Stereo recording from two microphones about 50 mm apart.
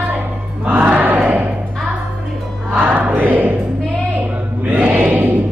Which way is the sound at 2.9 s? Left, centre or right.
Right.